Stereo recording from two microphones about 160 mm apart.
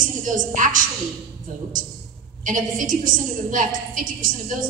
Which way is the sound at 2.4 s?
55° right (ahead or behind).